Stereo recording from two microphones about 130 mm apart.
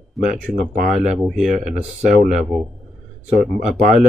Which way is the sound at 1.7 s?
70° right (ahead or behind).